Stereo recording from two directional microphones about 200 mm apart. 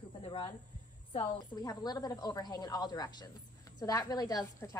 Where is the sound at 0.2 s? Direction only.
25° left (ahead or behind).